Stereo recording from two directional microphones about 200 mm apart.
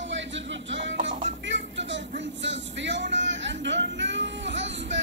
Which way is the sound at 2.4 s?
65° right (ahead or behind).